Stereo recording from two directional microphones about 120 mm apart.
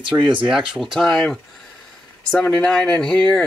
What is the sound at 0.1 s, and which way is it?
Speech, 15° right (ahead or behind).